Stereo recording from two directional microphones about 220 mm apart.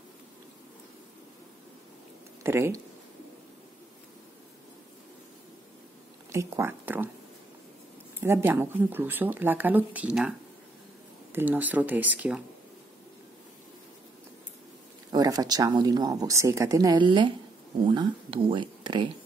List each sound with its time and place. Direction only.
2.4 s a woman's voice: 10° right (ahead or behind)
6.3 s a woman's voice: 10° right (ahead or behind)
8.2 s a woman's voice: 10° right (ahead or behind)
11.3 s a woman's voice: 10° right (ahead or behind)
15.0 s a woman's voice: 15° right (ahead or behind)